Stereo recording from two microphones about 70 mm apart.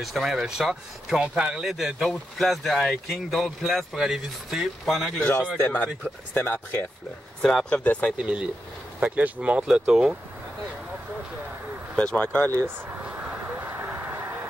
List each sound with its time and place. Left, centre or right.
0.0 s speech: centre
5.6 s speech: left
7.4 s speech: centre
8.2 s speech: centre
12.0 s speech: centre
12.6 s a sound: right